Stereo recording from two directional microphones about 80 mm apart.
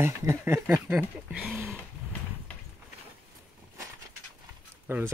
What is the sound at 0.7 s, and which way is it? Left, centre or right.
Speech, centre.